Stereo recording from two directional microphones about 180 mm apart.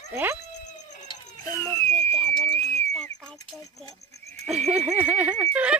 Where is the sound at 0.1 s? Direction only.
10° right (ahead or behind).